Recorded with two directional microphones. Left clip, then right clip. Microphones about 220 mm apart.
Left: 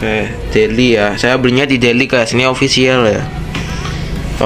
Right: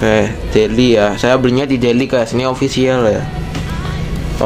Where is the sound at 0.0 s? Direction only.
25° right (ahead or behind).